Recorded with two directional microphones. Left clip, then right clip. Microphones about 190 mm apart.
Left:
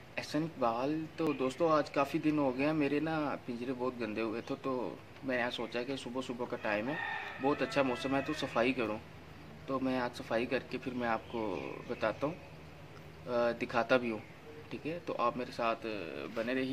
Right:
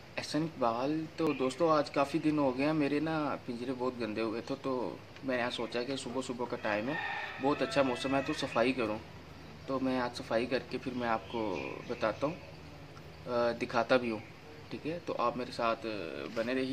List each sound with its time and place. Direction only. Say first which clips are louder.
0.1 s speech: right 1 dB; centre (ahead or behind)
13.3 s speech: right 1 dB; centre (ahead or behind)